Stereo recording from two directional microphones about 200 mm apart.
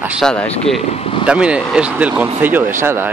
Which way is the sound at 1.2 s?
5° right (ahead or behind).